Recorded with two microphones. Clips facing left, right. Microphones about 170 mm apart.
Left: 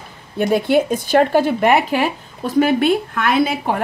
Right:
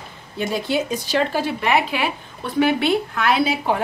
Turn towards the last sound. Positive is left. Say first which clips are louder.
# left 2 dB
turn(degrees=50)  # may be behind; listen again after turning